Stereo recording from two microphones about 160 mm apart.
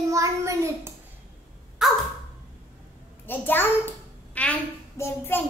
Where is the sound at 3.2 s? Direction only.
15° left (ahead or behind).